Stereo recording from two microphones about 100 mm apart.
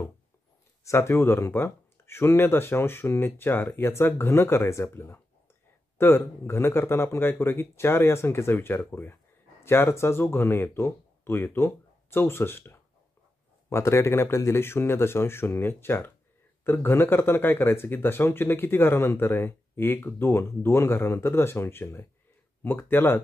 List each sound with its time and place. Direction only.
0.8 s speech: 25° left (ahead or behind)